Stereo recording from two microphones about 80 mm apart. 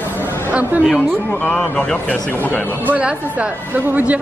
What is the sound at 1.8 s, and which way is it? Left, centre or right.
Speech, centre.